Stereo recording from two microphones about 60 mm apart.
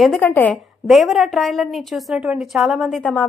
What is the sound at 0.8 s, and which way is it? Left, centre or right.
A woman's voice, centre.